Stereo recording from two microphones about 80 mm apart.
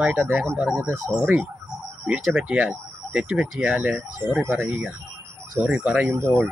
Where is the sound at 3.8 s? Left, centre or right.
Right.